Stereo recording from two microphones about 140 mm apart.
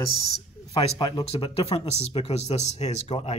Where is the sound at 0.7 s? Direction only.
30° left (ahead or behind).